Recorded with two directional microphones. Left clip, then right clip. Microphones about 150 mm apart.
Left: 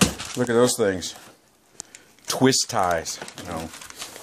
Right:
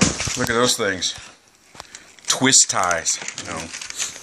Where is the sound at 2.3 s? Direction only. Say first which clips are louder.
Right 4 dB; 55° left (ahead or behind).